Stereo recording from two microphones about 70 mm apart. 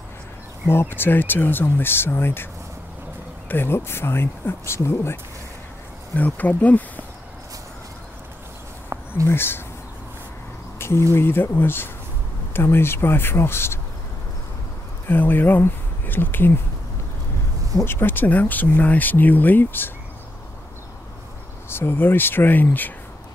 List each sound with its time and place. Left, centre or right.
0.7 s speech: left
3.4 s speech: left
6.1 s speech: left
9.3 s speech: left
10.8 s a sound: left
11.1 s speech: left
15.0 s speech: left
17.8 s speech: left
21.6 s speech: left